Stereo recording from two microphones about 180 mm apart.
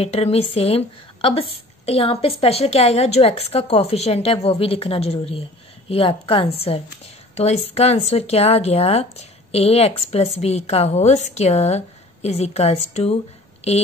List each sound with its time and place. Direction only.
0.0 s a woman's voice: 35° left (ahead or behind)